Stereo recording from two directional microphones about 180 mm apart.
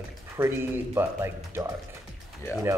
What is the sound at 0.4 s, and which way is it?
Speech, 10° right (ahead or behind).